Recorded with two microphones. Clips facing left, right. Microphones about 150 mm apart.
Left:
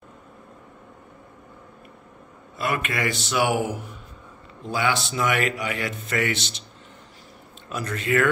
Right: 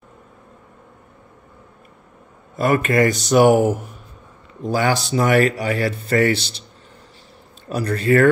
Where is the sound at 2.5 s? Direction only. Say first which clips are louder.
Right 9 dB; 45° right (ahead or behind).